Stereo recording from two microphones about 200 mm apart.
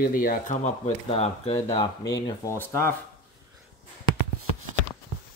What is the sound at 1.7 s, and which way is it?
Speech, 20° left (ahead or behind).